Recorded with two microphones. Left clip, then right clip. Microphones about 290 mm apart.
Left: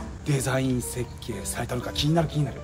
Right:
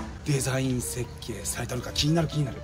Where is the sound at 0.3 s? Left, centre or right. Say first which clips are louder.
Left 2 dB; centre.